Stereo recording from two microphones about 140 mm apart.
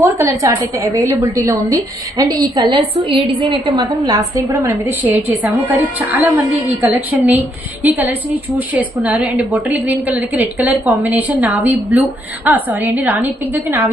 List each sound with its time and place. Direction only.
0.0 s a woman's voice: 25° right (ahead or behind)
5.0 s a woman's voice: 10° right (ahead or behind)